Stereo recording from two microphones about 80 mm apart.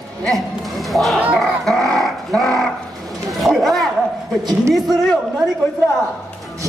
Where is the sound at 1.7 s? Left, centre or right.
Centre.